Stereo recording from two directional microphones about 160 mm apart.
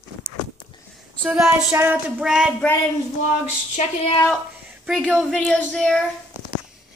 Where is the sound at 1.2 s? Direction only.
5° right (ahead or behind).